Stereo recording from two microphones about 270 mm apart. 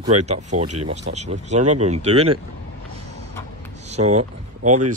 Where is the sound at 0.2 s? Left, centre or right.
Right.